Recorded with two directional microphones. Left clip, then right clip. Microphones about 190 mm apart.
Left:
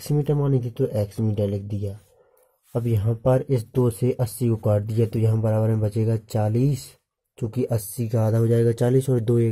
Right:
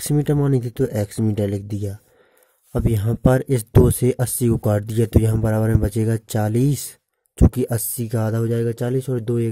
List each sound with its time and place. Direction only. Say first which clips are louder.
0.0 s speech: right 3 dB; 45° right (ahead or behind); by 9.5 s 25° right (ahead or behind)